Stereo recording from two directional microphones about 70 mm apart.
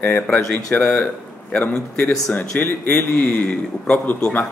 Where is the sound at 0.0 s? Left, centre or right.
Left.